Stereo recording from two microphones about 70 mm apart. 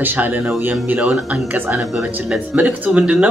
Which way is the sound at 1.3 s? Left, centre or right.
Centre.